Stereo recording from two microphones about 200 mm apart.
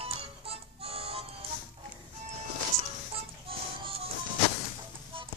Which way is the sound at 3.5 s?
25° right (ahead or behind).